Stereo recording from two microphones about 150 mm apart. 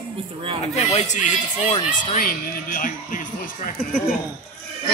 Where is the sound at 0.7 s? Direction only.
50° left (ahead or behind).